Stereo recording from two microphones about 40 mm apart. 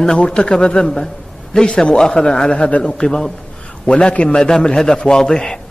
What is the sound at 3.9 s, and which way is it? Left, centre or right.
A man's voice, left.